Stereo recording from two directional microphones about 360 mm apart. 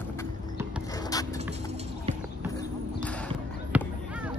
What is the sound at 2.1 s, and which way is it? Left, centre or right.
Basketball bounce, centre.